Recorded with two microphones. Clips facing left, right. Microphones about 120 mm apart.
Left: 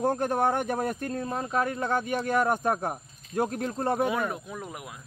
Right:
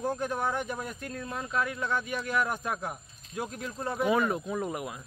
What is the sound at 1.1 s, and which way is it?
Speech, 35° left (ahead or behind).